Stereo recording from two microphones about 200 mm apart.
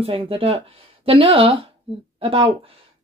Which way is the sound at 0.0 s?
30° right (ahead or behind).